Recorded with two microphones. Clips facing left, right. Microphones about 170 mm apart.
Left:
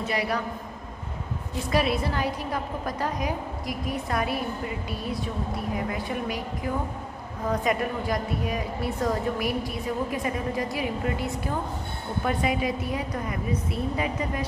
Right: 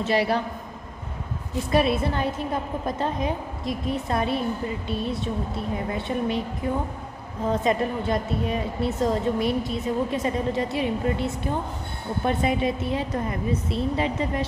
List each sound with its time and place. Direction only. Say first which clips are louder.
0.0 s speech: right 5 dB; 30° right (ahead or behind)
1.7 s speech: right 3 dB; 25° right (ahead or behind)
12.3 s speech: right 3 dB; 25° right (ahead or behind)